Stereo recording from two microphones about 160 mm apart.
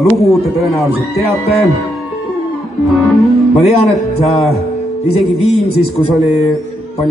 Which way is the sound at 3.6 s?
40° left (ahead or behind).